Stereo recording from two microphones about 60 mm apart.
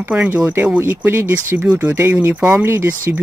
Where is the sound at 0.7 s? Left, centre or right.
Right.